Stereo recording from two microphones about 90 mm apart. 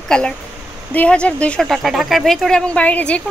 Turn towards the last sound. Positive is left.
turn(degrees=15)  # may be behind; listen again after turning